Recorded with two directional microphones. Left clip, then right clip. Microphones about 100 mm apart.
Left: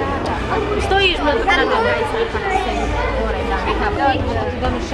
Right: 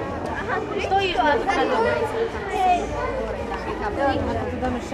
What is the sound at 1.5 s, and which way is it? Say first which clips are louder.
Speech: left 5 dB; 5° right (ahead or behind).